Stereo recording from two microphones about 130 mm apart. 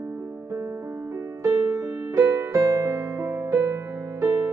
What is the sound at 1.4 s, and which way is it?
Music, 25° right (ahead or behind).